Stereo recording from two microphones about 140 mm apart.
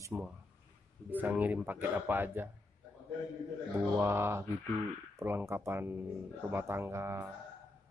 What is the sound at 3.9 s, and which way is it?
Speech, 15° right (ahead or behind).